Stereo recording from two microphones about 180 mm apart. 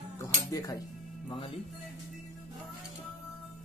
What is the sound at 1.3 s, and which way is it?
Speech, 30° left (ahead or behind).